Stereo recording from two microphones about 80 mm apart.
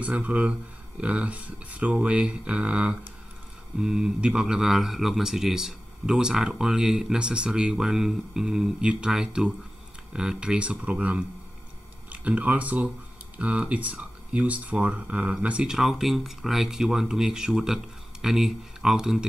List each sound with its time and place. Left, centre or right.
0.0 s speech: centre